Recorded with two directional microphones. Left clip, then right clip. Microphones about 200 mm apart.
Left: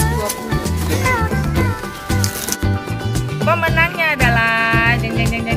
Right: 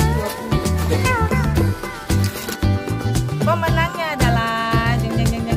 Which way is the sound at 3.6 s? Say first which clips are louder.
Left 5 dB; 10° right (ahead or behind).